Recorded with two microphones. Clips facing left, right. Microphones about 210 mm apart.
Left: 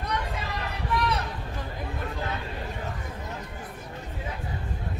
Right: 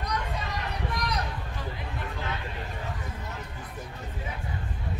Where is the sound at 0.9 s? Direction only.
40° right (ahead or behind).